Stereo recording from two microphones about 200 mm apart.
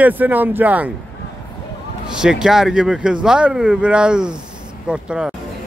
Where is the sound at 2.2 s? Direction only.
5° right (ahead or behind).